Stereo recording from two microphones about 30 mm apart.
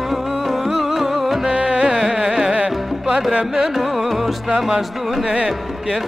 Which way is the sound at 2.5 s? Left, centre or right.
Right.